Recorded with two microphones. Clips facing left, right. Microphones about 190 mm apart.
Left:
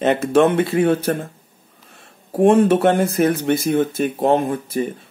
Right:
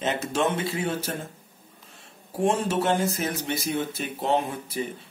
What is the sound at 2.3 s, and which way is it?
Speech, 60° left (ahead or behind).